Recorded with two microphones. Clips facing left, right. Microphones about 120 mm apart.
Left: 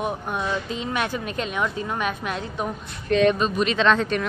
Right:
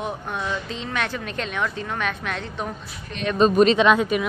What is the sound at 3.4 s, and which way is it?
Speech, 35° right (ahead or behind).